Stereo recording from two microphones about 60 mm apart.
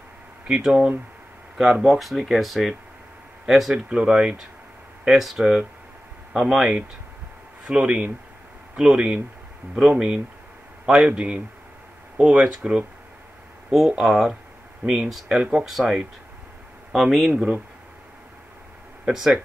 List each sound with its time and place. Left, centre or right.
0.5 s speech: centre
5.0 s speech: centre
6.3 s speech: centre
7.6 s speech: centre
16.9 s speech: centre
19.1 s speech: centre